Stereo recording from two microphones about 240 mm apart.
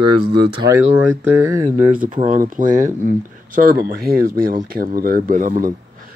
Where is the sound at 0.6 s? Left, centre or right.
Right.